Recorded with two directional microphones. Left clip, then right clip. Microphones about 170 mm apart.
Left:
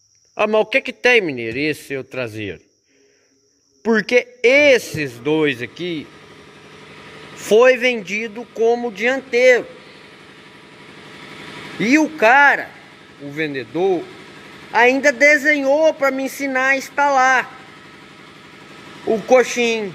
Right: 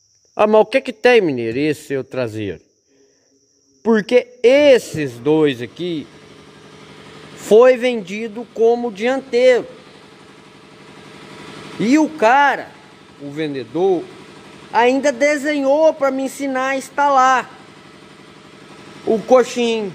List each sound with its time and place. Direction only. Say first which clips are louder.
0.4 s a man's voice: right 3 dB; 30° right (ahead or behind)
3.8 s a man's voice: right 1 dB; 20° right (ahead or behind)
7.4 s a man's voice: right 2 dB; 25° right (ahead or behind)
11.8 s a woman's voice: even; 15° right (ahead or behind)
19.0 s a man's voice: right 1 dB; 20° right (ahead or behind)